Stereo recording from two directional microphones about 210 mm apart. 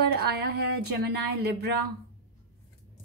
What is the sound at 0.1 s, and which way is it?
A woman's voice, 50° right (ahead or behind).